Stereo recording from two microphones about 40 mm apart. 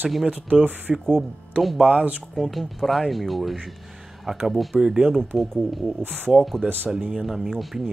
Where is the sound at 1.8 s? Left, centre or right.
Right.